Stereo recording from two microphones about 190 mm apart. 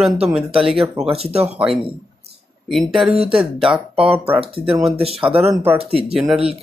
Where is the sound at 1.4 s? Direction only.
5° right (ahead or behind).